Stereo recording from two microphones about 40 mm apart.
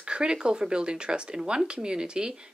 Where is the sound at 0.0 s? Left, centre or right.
Right.